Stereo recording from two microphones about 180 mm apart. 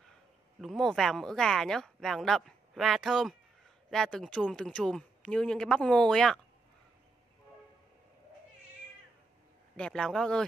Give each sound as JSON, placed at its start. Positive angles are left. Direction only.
{"t": 0.6, "sound": "speech", "side_deg": 0}
{"t": 9.8, "sound": "speech", "side_deg": 5}